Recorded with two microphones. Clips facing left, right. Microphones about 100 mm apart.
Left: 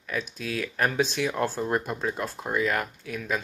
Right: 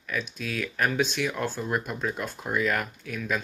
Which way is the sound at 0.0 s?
30° left (ahead or behind).